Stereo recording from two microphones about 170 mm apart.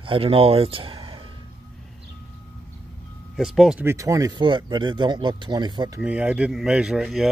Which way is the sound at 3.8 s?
20° right (ahead or behind).